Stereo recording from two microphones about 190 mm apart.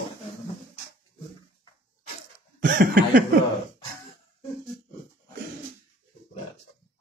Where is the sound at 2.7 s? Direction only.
55° right (ahead or behind).